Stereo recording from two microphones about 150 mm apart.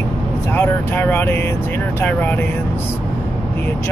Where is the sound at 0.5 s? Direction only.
15° left (ahead or behind).